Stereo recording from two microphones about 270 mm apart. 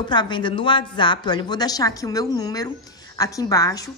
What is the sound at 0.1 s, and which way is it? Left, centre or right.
A woman's voice, centre.